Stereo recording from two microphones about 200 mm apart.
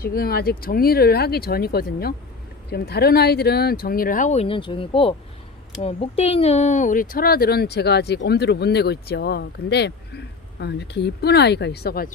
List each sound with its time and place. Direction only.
0.0 s speech: 50° left (ahead or behind)